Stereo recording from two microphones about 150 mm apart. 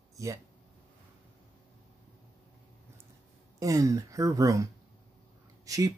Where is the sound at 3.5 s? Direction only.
20° right (ahead or behind).